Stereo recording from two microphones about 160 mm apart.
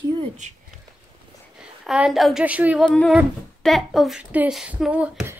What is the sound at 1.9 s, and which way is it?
Speech, 5° right (ahead or behind).